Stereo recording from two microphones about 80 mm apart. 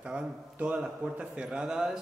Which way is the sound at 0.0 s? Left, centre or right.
Centre.